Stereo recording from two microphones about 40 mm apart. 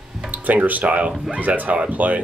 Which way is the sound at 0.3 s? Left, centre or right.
Right.